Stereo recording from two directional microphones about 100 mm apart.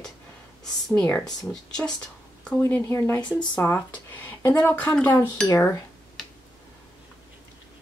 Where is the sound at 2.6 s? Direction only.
25° left (ahead or behind).